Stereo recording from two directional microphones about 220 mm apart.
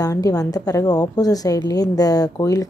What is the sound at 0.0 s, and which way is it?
A woman's voice, 15° left (ahead or behind).